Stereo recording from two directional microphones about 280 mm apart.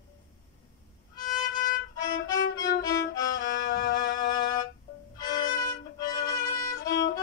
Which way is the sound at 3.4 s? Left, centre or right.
Left.